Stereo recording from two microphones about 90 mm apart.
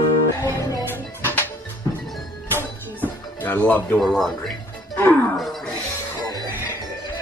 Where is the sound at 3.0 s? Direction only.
20° left (ahead or behind).